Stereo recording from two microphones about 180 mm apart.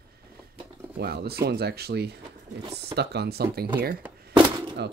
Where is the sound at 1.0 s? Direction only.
60° right (ahead or behind).